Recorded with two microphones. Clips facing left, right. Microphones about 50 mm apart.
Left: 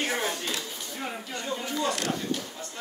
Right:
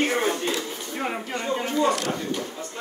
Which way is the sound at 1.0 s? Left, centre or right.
Right.